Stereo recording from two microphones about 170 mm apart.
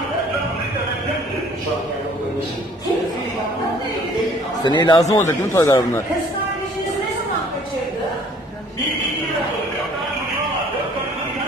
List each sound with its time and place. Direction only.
4.6 s speech: 30° left (ahead or behind)
5.1 s speech: 20° left (ahead or behind)